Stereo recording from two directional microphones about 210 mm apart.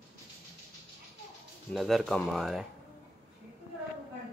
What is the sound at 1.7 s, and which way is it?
Speech, centre (ahead or behind).